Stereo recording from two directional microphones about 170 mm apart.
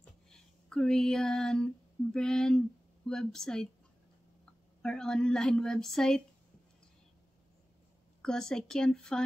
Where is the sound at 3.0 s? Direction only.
5° left (ahead or behind).